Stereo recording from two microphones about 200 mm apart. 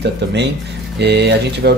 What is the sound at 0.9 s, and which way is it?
Speech, 60° right (ahead or behind).